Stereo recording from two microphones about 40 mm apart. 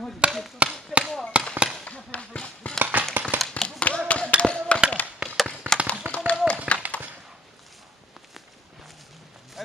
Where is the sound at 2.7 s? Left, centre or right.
Right.